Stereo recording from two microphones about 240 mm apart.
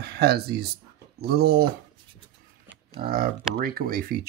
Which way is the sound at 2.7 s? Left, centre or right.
Right.